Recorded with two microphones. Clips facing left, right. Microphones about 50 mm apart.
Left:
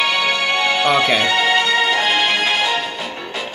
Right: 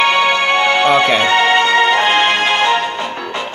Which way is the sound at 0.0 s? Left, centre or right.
Centre.